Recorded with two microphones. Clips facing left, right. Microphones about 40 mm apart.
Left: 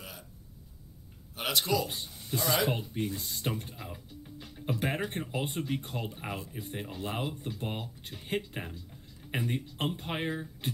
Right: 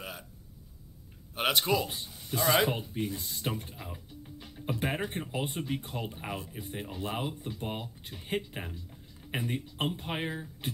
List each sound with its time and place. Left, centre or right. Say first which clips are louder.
1.3 s speech: right 2 dB; right
1.9 s speech: left 1 dB; centre
2.3 s speech: right 3 dB; centre
2.9 s speech: even; centre